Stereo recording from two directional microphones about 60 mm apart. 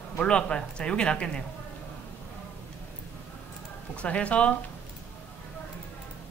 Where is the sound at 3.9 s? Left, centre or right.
Centre.